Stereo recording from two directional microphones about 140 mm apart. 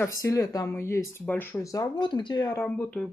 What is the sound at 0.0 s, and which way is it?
Speech, 25° left (ahead or behind).